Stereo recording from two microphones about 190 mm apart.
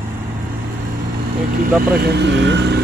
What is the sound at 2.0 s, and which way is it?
Speech, 60° right (ahead or behind).